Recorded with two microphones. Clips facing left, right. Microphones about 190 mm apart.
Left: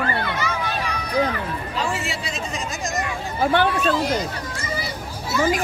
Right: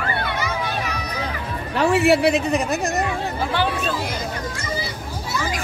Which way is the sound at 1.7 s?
65° right (ahead or behind).